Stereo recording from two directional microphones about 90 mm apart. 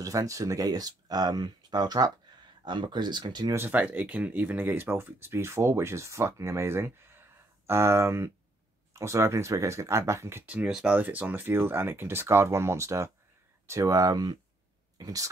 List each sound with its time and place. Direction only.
0.0 s speech: 40° right (ahead or behind)
3.5 s speech: 20° right (ahead or behind)
10.4 s speech: 15° right (ahead or behind); by 15.2 s 45° right (ahead or behind)